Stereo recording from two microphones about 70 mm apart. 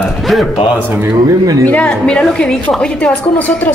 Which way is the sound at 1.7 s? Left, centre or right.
Centre.